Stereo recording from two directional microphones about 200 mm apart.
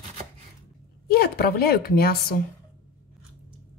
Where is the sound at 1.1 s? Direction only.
50° left (ahead or behind).